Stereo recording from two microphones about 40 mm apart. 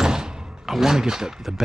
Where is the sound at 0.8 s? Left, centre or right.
Centre.